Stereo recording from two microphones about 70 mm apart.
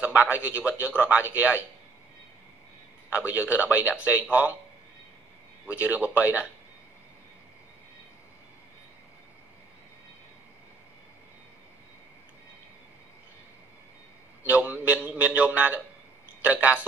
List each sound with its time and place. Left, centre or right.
0.0 s speech: right
3.1 s speech: right
5.7 s speech: right
14.4 s speech: right